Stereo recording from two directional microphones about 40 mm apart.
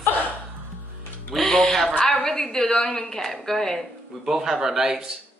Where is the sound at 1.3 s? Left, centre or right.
Centre.